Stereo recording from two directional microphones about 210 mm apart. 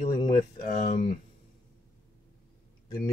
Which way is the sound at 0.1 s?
15° left (ahead or behind).